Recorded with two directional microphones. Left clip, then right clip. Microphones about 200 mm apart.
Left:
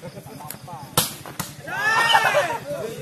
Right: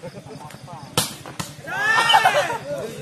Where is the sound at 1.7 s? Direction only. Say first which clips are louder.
Right 1 dB; 5° right (ahead or behind).